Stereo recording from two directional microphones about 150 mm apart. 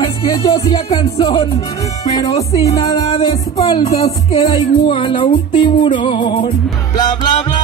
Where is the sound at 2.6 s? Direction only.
45° left (ahead or behind).